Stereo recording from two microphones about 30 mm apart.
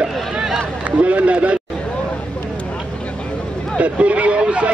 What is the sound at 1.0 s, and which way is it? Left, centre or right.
Speech, right.